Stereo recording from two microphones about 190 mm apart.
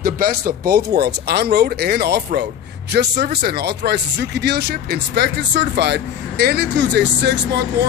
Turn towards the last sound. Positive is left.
turn(degrees=-65)  # may be behind; listen again after turning